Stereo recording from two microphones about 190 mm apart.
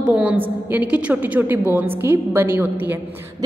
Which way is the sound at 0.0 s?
5° right (ahead or behind).